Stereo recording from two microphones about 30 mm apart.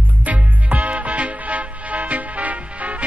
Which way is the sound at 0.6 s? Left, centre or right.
Right.